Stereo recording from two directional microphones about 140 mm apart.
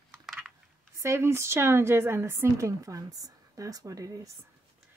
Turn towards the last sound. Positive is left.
turn(degrees=-25)  # may be behind; listen again after turning